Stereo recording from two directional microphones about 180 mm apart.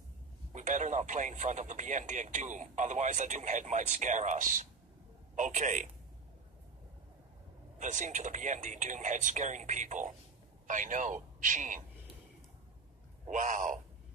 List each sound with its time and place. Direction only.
0.5 s speech: 45° right (ahead or behind)
7.8 s a man's voice: 40° right (ahead or behind)
13.3 s speech: 45° right (ahead or behind)